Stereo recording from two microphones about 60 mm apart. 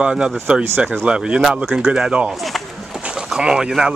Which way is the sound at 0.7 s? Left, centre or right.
Right.